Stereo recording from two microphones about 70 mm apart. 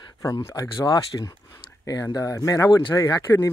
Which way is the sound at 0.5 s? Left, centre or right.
Left.